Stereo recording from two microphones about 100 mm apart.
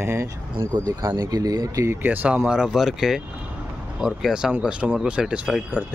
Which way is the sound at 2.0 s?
15° right (ahead or behind).